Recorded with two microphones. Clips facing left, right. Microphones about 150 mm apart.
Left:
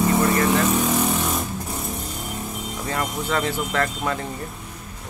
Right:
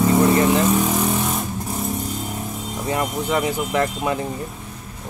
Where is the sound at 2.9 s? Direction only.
15° right (ahead or behind).